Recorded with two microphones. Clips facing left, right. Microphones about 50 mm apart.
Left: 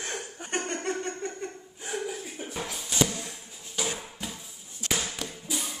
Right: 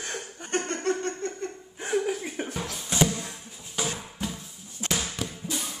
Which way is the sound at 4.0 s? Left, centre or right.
Centre.